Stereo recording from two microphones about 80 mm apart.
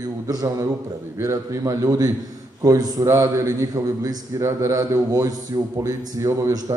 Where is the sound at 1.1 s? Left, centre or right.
Right.